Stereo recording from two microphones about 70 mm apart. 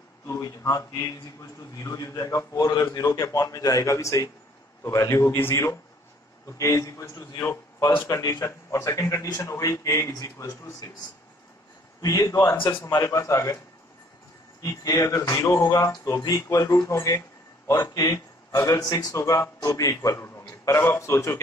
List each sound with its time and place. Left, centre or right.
0.4 s a man's voice: left
7.8 s a man's voice: left
12.0 s a man's voice: left
14.6 s a man's voice: left
18.8 s speech: left
19.1 s a man's voice: left